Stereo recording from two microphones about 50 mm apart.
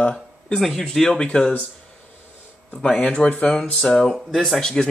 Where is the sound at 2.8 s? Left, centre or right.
Centre.